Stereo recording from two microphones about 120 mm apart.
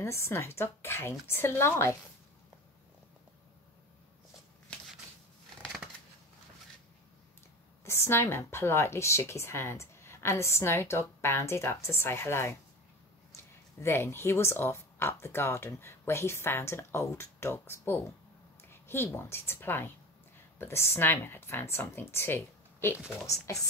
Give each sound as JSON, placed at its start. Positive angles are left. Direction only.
{"t": 0.0, "sound": "speech", "side_deg": 25}
{"t": 7.8, "sound": "speech", "side_deg": 20}
{"t": 13.7, "sound": "a woman's voice", "side_deg": 20}